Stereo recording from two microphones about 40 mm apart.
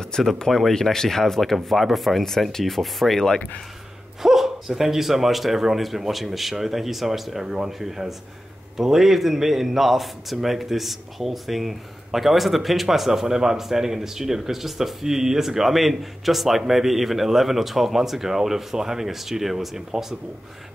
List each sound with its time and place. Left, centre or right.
0.1 s speech: centre
0.5 s speech: centre
4.2 s a man's voice: centre